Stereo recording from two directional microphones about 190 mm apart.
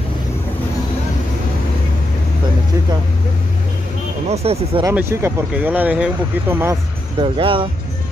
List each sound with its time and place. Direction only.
4.3 s speech: 35° right (ahead or behind)
4.8 s speech: 15° right (ahead or behind)
7.2 s speech: 25° right (ahead or behind)